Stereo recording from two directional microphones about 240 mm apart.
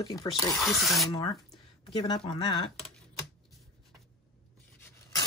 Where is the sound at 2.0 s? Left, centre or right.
Centre.